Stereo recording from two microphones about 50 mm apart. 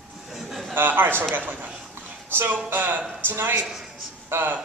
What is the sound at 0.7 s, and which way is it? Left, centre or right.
A man's voice, right.